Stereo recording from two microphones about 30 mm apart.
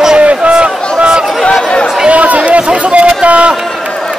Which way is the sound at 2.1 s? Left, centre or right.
Right.